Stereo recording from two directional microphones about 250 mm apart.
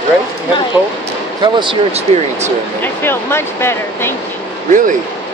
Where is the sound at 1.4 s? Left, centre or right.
Centre.